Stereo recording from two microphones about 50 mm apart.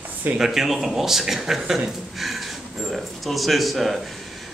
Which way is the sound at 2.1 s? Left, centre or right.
Centre.